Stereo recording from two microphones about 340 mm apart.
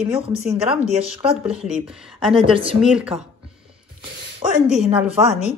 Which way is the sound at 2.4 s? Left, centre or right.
Centre.